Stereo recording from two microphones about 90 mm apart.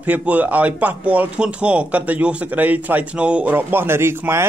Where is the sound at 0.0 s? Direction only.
20° right (ahead or behind).